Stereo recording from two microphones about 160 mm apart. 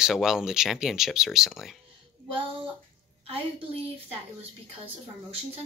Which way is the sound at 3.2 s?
35° right (ahead or behind).